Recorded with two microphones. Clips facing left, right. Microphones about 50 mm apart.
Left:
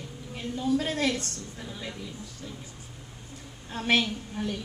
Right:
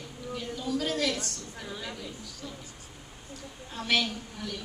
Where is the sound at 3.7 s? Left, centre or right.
Left.